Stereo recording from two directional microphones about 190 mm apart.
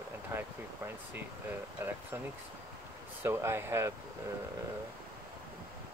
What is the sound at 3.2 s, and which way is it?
Speech, 15° right (ahead or behind).